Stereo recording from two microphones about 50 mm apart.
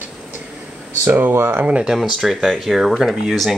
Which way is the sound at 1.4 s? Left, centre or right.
Right.